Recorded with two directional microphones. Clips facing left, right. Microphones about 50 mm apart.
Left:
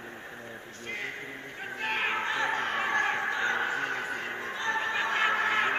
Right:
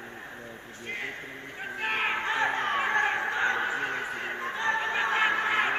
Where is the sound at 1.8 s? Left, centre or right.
Centre.